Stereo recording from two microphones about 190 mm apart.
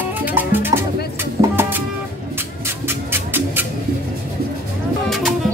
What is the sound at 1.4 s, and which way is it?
Music, 30° right (ahead or behind).